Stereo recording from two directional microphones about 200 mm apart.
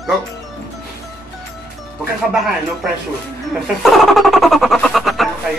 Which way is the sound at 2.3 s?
Centre (ahead or behind).